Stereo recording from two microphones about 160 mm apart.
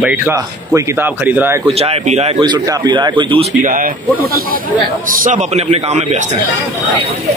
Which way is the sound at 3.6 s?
60° right (ahead or behind).